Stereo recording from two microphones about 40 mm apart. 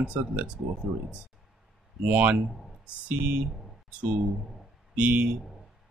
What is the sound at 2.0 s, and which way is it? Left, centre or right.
Speech, right.